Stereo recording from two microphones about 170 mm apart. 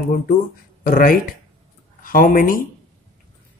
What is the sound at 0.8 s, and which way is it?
Speech, 55° left (ahead or behind).